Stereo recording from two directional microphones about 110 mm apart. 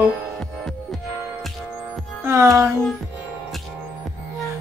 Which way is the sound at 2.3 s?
25° right (ahead or behind).